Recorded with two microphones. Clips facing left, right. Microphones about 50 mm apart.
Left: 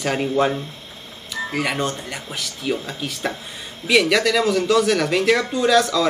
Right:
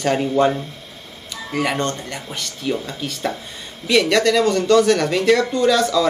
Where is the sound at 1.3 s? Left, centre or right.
Centre.